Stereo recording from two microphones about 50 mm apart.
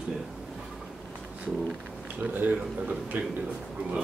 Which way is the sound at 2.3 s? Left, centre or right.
Right.